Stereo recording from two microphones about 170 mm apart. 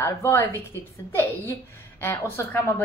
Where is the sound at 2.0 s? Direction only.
10° left (ahead or behind).